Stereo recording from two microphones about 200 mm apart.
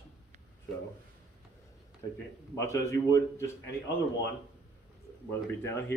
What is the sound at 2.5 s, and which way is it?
Speech, 15° left (ahead or behind).